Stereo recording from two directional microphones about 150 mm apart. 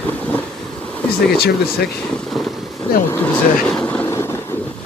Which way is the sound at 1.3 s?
90° left.